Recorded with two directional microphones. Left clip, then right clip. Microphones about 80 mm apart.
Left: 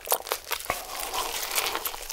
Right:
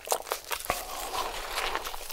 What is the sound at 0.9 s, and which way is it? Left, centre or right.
Crumpling, centre.